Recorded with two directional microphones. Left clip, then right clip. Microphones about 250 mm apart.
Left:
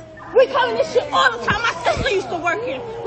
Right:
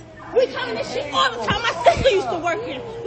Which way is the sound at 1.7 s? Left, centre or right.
Centre.